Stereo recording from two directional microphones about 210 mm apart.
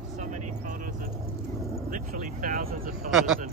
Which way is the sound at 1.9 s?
40° right (ahead or behind).